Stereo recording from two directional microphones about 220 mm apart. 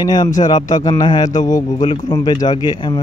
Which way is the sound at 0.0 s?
20° left (ahead or behind).